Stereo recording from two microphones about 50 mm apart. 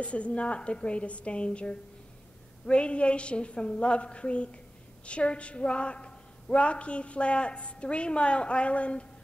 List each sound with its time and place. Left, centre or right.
0.0 s a woman's voice: left